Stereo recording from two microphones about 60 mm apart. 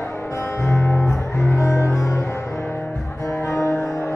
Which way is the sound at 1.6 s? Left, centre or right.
Left.